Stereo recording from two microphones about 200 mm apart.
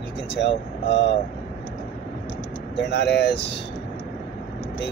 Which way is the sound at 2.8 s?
55° left (ahead or behind).